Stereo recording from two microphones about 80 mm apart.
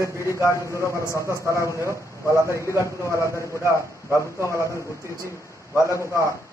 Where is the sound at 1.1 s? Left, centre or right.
Right.